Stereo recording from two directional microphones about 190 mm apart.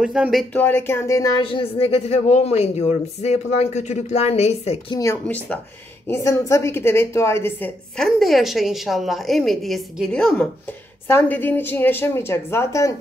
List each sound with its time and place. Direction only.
0.0 s a woman's voice: 5° right (ahead or behind)
0.6 s speech: 10° left (ahead or behind); by 4.9 s 35° left (ahead or behind)
4.9 s a woman's voice: 15° left (ahead or behind)